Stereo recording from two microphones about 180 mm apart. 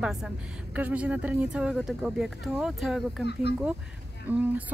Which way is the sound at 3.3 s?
65° left (ahead or behind).